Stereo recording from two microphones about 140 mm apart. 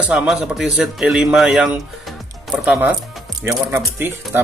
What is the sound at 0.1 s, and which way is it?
A man's voice, 5° right (ahead or behind).